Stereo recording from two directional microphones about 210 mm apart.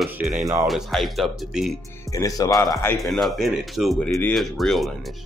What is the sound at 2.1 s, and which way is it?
Speech, 15° left (ahead or behind).